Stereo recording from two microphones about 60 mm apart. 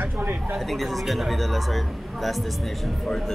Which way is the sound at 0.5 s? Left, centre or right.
Centre.